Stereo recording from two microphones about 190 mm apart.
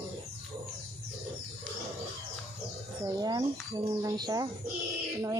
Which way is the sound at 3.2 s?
20° right (ahead or behind).